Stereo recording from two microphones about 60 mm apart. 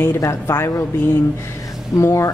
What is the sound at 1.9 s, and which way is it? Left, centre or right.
Speech, left.